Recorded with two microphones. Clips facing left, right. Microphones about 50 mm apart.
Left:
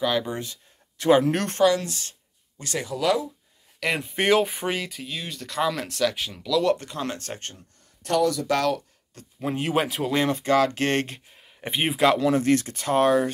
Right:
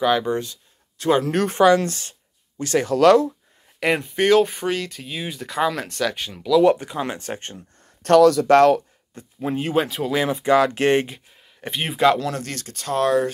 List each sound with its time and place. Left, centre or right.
0.0 s speech: centre
0.4 s a sound: left
1.1 s speech: centre
1.8 s a woman's voice: right
2.9 s speech: right
4.1 s speech: centre
5.0 s speech: centre
6.6 s speech: centre
8.0 s speech: right
9.4 s speech: centre
10.4 s speech: right
11.1 s speech: centre
11.9 s speech: centre
12.4 s speech: left